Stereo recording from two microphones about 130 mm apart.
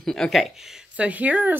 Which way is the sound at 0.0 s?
5° left (ahead or behind).